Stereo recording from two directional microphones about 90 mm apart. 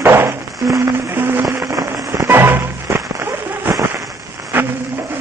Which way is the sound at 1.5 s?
35° right (ahead or behind).